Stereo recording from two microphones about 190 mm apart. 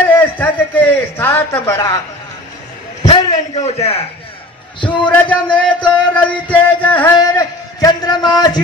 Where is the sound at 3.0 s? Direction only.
30° left (ahead or behind).